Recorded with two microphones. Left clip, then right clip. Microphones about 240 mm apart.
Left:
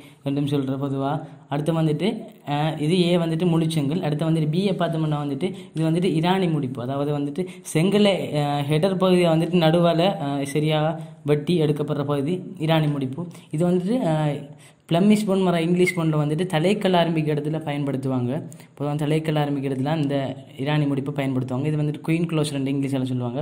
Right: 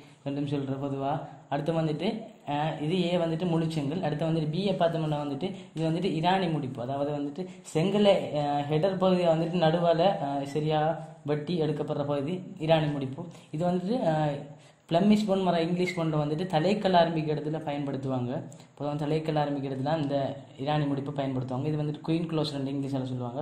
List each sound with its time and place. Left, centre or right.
0.2 s a man's voice: left